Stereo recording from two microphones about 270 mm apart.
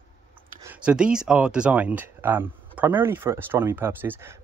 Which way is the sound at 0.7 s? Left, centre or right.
Centre.